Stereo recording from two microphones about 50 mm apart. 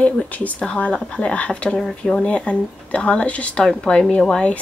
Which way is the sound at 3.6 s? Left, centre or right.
Centre.